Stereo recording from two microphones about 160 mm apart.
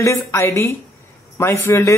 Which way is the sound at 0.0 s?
20° left (ahead or behind).